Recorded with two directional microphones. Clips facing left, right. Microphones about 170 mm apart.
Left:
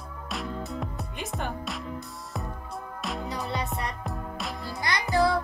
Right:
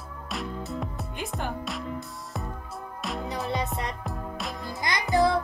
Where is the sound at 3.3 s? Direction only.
20° right (ahead or behind).